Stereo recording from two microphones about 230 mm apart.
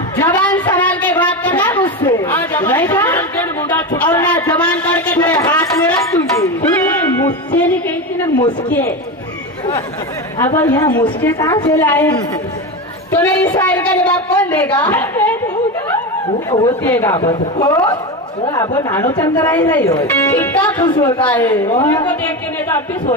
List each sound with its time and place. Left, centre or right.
0.2 s a sound: centre
8.2 s a woman's voice: centre
10.4 s a woman's voice: centre
13.1 s a woman's voice: centre
16.4 s a woman's voice: centre
20.7 s a woman's voice: centre
21.2 s a woman's voice: centre